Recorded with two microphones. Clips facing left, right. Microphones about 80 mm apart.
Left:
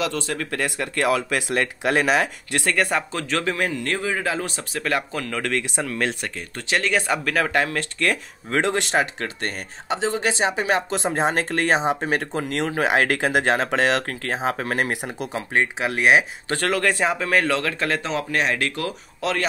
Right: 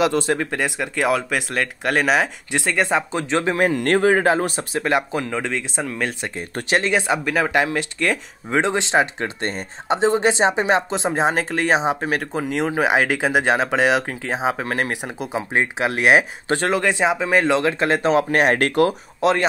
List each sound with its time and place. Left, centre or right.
0.0 s speech: right
0.5 s speech: centre
2.5 s speech: centre
3.2 s speech: right
3.7 s speech: right; by 6.1 s centre
6.3 s speech: right
7.0 s speech: centre
11.0 s speech: centre
15.3 s speech: centre
16.7 s speech: centre; by 18.1 s right
18.1 s speech: right